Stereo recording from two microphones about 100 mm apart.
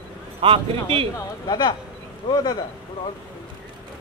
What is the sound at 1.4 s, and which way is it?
Speech, 40° left (ahead or behind).